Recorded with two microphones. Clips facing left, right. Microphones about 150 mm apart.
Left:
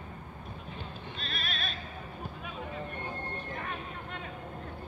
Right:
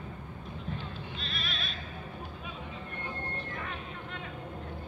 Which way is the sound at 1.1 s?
45° left (ahead or behind).